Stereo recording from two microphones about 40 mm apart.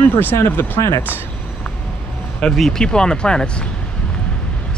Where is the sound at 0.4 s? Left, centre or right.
Left.